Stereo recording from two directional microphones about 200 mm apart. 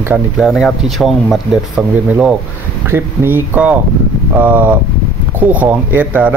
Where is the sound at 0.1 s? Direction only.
Centre (ahead or behind).